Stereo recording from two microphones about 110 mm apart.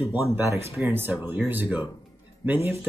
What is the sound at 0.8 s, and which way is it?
Speech, 20° right (ahead or behind).